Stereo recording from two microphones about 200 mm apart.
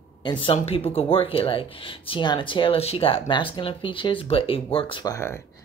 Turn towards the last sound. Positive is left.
turn(degrees=15)  # may be behind; listen again after turning